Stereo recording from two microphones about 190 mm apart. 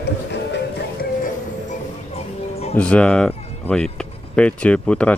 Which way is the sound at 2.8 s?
5° left (ahead or behind).